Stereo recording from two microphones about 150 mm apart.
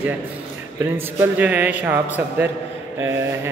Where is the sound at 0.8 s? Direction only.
15° right (ahead or behind).